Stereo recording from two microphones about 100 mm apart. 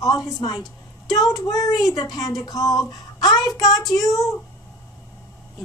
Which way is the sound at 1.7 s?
Centre (ahead or behind).